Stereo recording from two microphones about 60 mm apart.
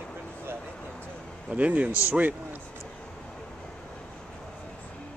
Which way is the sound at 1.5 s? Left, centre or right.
Right.